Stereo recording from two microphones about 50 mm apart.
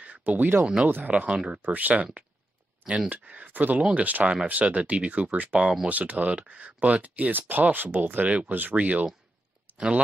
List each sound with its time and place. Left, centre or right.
0.0 s a sound: right
0.8 s speech: right
1.1 s speech: right
1.6 s speech: right
3.1 s speech: right
8.3 s speech: right
8.5 s speech: right; by 10.0 s centre